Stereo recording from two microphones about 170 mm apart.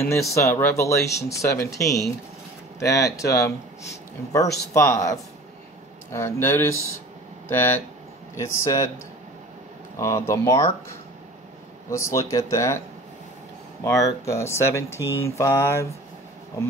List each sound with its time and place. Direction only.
0.0 s speech: 15° left (ahead or behind)
4.7 s speech: 20° left (ahead or behind)
9.9 s speech: 15° left (ahead or behind)
11.9 s speech: 15° left (ahead or behind)
13.8 s speech: 20° left (ahead or behind)